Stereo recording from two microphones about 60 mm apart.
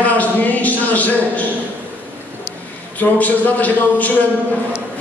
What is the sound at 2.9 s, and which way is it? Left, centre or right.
A man's voice, left.